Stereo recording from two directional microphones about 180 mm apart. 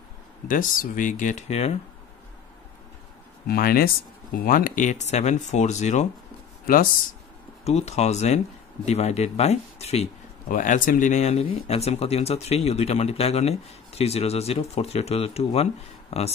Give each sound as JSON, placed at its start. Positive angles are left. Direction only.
{"t": 0.5, "sound": "speech", "side_deg": 50}
{"t": 3.4, "sound": "speech", "side_deg": 55}
{"t": 6.6, "sound": "speech", "side_deg": 50}
{"t": 7.6, "sound": "speech", "side_deg": 35}
{"t": 10.5, "sound": "speech", "side_deg": 45}